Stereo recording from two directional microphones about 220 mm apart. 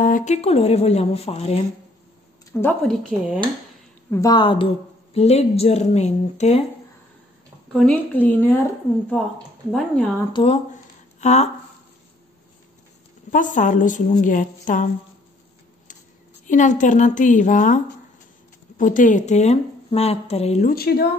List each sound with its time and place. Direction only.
0.0 s a woman's voice: 35° left (ahead or behind)
2.6 s a woman's voice: 10° left (ahead or behind)
4.1 s a woman's voice: 15° left (ahead or behind)
7.7 s a woman's voice: 5° left (ahead or behind)
10.3 s a woman's voice: 25° left (ahead or behind)
13.3 s speech: 35° left (ahead or behind)
16.4 s speech: 35° left (ahead or behind)
20.7 s speech: 45° left (ahead or behind)